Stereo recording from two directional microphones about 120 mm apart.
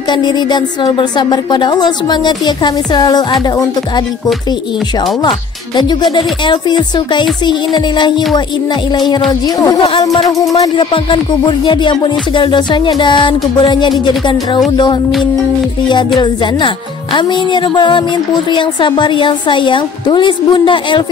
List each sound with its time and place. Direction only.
0.1 s speech: 35° left (ahead or behind)
6.1 s speech: 40° left (ahead or behind)
10.5 s speech: 30° left (ahead or behind)
10.9 s speech: 45° left (ahead or behind)
16.2 s speech: 45° left (ahead or behind)